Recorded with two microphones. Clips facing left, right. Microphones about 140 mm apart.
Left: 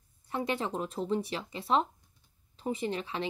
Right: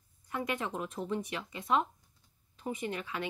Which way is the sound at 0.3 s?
30° left (ahead or behind).